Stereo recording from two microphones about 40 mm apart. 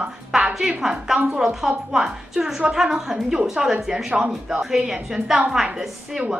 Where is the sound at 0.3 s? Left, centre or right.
Right.